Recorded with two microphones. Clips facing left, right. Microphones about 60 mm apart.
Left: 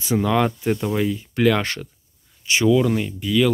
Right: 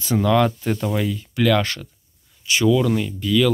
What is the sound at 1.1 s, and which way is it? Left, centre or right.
Speech, left.